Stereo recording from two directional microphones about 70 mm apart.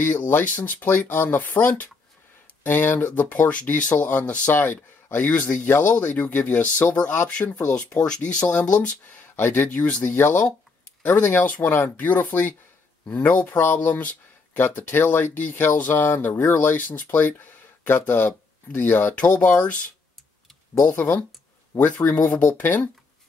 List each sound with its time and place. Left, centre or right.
0.0 s speech: left
20.9 s speech: left